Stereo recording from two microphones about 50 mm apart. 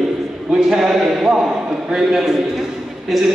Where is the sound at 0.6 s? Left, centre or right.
Centre.